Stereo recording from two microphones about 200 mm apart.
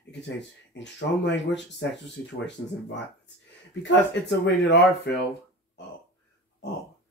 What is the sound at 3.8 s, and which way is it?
Speech, 60° left (ahead or behind).